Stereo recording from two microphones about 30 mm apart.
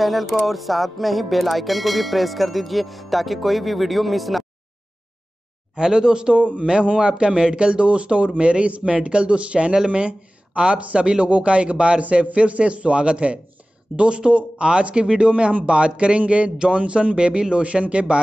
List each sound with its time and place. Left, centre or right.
0.0 s speech: centre
5.8 s speech: right
6.4 s a man's voice: right
12.0 s a man's voice: right